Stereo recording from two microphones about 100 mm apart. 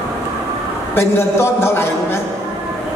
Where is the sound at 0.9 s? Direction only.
25° left (ahead or behind).